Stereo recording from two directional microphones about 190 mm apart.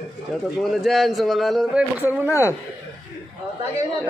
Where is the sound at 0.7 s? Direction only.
Centre (ahead or behind).